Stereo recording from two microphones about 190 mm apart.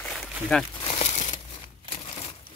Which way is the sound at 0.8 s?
30° left (ahead or behind).